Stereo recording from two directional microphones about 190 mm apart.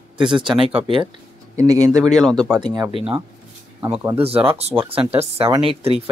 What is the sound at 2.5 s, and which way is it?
Speech, 20° right (ahead or behind).